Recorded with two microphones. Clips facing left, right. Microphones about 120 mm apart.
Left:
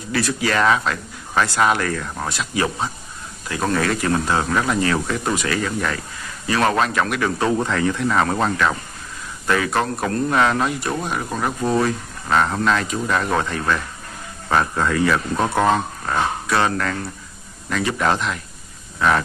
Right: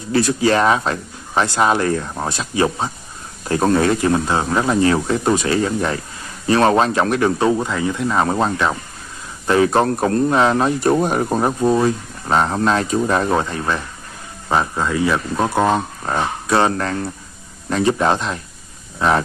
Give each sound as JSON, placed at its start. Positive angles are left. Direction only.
{"t": 0.1, "sound": "speech", "side_deg": -25}
{"t": 11.6, "sound": "a man's voice", "side_deg": -15}
{"t": 12.3, "sound": "a man's voice", "side_deg": -30}
{"t": 16.1, "sound": "speech", "side_deg": -30}